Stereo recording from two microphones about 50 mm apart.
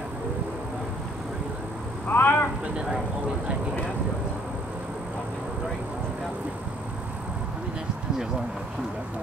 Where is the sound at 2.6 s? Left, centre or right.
Centre.